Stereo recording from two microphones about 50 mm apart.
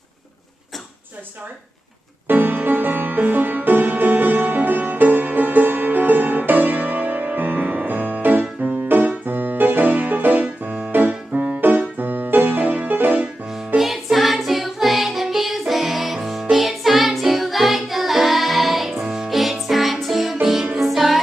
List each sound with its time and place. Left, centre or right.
2.2 s music: right
9.2 s keyboard: right
10.9 s music: right
12.0 s piano: right
13.7 s music: centre